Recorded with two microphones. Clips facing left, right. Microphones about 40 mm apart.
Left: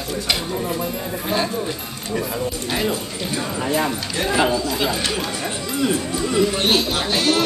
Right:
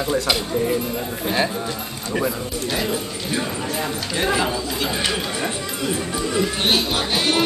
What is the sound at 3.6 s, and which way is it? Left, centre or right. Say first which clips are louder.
Speech: left 5 dB; left.